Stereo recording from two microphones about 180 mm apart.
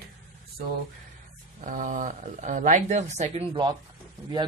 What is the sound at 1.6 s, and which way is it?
Speech, 45° right (ahead or behind).